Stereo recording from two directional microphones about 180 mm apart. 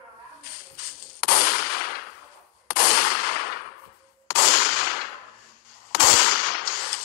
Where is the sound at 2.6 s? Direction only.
55° left (ahead or behind).